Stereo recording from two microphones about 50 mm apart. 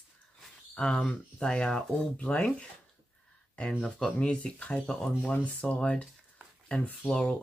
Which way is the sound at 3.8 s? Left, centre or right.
Centre.